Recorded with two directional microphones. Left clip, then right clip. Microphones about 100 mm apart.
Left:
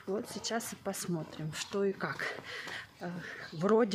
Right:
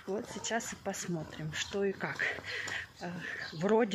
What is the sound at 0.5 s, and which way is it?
Speech, 35° left (ahead or behind).